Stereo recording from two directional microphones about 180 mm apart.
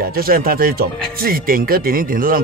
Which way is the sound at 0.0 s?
55° right (ahead or behind).